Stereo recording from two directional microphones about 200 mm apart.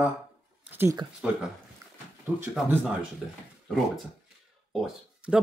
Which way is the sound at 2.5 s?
5° right (ahead or behind).